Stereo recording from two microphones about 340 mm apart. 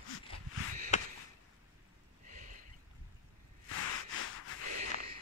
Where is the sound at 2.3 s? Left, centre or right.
Right.